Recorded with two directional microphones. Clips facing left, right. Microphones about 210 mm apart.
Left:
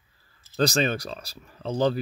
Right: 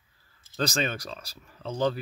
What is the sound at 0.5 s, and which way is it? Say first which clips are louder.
Speech: left 5 dB; 35° left (ahead or behind).